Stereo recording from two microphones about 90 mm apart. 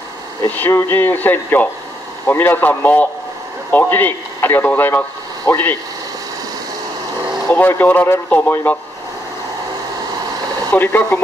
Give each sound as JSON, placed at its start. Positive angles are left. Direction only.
{"t": 0.5, "sound": "speech", "side_deg": 25}
{"t": 7.5, "sound": "speech", "side_deg": 20}
{"t": 10.7, "sound": "speech", "side_deg": 20}